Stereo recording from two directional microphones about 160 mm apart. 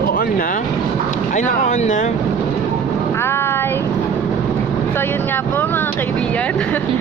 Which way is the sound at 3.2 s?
15° left (ahead or behind).